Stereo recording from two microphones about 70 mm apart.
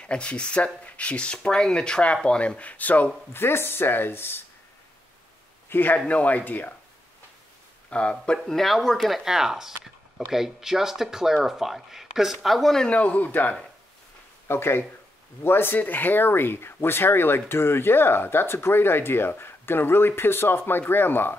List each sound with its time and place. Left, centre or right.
0.0 s speech: centre
3.3 s speech: left
5.7 s a man's voice: left
7.9 s speech: centre
12.9 s speech: left